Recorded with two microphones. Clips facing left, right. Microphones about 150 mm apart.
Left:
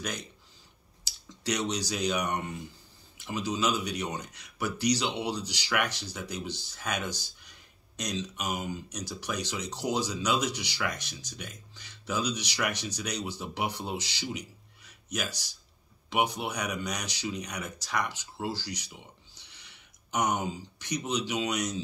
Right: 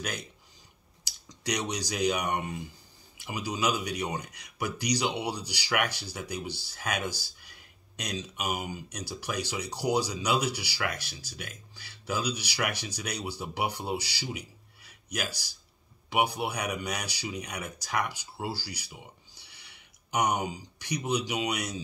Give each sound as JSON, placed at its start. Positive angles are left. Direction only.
{"t": 0.0, "sound": "speech", "side_deg": -10}